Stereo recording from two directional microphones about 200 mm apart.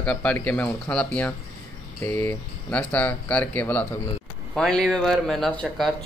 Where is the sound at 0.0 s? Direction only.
5° left (ahead or behind).